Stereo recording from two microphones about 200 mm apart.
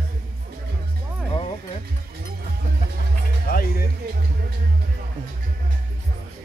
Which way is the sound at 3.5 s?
50° left (ahead or behind).